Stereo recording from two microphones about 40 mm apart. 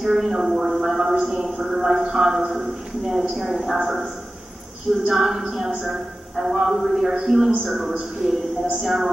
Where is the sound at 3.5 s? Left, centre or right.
Centre.